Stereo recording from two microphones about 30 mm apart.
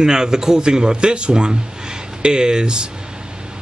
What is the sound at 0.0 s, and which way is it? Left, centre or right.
Speech, right.